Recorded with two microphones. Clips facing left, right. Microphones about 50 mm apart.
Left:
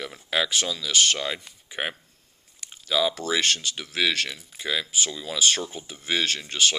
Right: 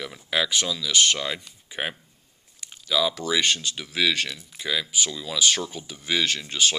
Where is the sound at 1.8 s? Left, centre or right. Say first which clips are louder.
Even; centre.